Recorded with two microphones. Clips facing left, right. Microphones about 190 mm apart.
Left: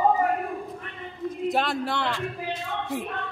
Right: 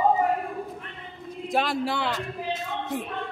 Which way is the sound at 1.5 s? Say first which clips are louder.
Right 4 dB; centre (ahead or behind).